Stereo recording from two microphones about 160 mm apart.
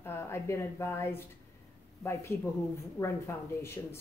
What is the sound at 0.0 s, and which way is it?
A woman's voice, 15° left (ahead or behind).